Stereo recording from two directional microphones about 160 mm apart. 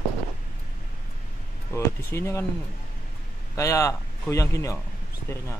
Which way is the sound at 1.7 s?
15° left (ahead or behind).